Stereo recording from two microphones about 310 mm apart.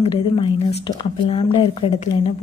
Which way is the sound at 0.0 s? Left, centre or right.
Centre.